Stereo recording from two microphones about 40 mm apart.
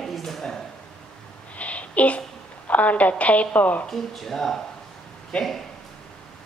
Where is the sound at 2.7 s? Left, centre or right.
Left.